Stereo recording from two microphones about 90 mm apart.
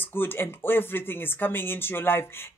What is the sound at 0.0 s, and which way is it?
Speech, 25° left (ahead or behind).